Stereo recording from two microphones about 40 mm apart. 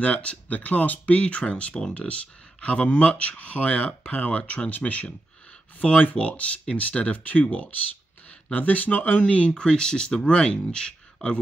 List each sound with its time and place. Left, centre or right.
0.0 s speech: left
8.5 s speech: left
9.2 s speech: left